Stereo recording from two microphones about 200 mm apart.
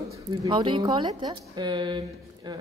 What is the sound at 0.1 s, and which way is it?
A woman's voice, 20° right (ahead or behind).